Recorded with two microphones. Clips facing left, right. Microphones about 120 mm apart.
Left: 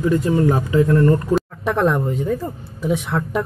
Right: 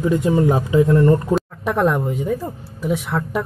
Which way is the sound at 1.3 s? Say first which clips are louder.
Even; 5° right (ahead or behind).